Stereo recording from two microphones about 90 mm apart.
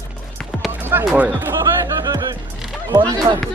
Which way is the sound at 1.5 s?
45° right (ahead or behind).